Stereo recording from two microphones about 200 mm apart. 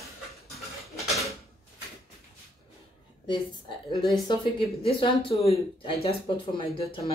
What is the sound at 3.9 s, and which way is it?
Speech, 25° left (ahead or behind).